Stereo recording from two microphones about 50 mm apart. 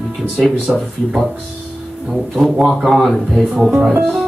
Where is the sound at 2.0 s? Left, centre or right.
Centre.